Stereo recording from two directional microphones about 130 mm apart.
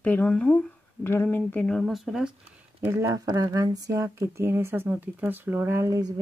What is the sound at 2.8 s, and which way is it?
Speech, 20° right (ahead or behind).